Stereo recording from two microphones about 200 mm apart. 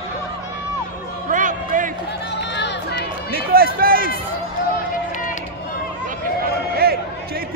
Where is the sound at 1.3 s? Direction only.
40° right (ahead or behind).